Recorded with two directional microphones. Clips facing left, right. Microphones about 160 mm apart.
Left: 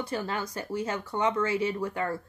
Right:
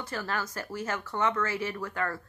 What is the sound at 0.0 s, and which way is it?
A woman's voice, 20° left (ahead or behind).